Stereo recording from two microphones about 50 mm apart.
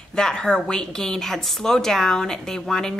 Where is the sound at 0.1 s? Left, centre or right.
Centre.